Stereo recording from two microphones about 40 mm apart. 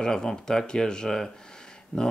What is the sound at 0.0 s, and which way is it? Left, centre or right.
Speech, centre.